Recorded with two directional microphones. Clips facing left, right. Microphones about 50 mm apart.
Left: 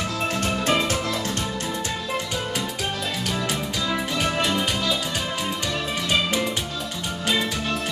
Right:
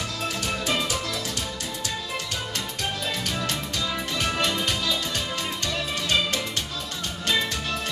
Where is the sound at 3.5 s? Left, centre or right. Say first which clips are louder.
Left 3 dB; centre.